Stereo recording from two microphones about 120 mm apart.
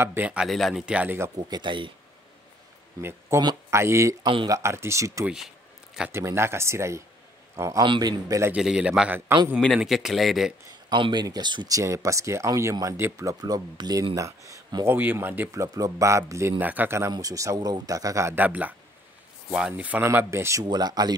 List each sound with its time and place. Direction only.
0.0 s speech: 15° right (ahead or behind)
1.3 s a man's voice: 35° right (ahead or behind)
3.0 s speech: 20° right (ahead or behind)
5.2 s speech: 5° right (ahead or behind)
6.1 s a man's voice: 20° right (ahead or behind)
7.8 s a man's voice: 40° right (ahead or behind)
8.5 s speech: 10° right (ahead or behind)
10.7 s speech: 40° right (ahead or behind)
15.0 s speech: 15° right (ahead or behind)
17.1 s speech: 30° right (ahead or behind)
20.6 s a man's voice: 35° right (ahead or behind)